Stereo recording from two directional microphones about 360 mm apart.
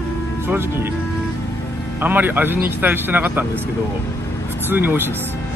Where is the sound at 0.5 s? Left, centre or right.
Centre.